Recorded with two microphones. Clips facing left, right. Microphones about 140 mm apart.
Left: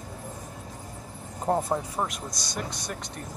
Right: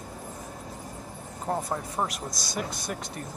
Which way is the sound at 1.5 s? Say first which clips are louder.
Left 4 dB; 35° left (ahead or behind).